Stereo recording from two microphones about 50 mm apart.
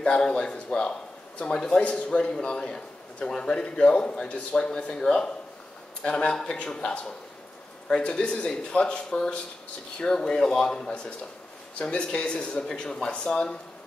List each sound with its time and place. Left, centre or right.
0.0 s a man's voice: centre